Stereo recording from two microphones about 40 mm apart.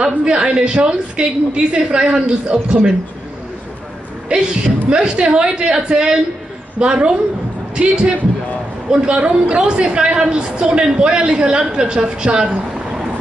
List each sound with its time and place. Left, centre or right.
0.0 s a woman's voice: right
4.3 s a woman's voice: right